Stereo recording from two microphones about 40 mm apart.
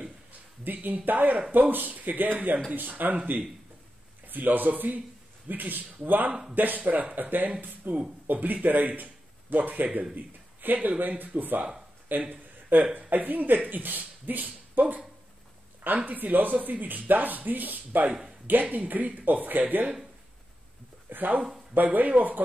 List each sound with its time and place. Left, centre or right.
0.3 s a man's voice: right
4.3 s speech: right
12.3 s a sound: right
13.1 s speech: right
16.1 s speech: right
21.1 s speech: right